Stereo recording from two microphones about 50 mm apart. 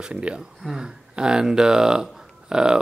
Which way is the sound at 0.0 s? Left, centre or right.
Right.